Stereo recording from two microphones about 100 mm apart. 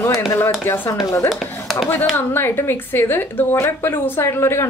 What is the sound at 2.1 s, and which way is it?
A woman's voice, 20° left (ahead or behind).